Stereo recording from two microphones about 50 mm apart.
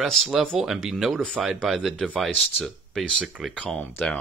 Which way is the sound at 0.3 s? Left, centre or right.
Centre.